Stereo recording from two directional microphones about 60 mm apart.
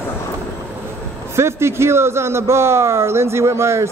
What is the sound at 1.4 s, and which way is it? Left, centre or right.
Speech, right.